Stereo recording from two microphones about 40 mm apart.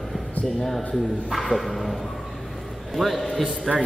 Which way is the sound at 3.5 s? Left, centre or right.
Centre.